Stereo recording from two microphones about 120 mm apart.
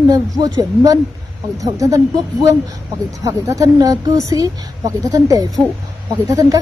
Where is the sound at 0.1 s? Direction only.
30° right (ahead or behind).